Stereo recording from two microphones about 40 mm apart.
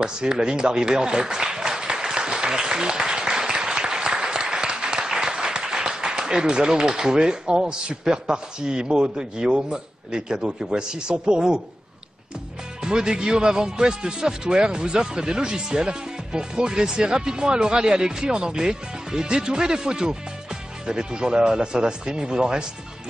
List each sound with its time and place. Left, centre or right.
0.0 s speech: right
12.8 s speech: centre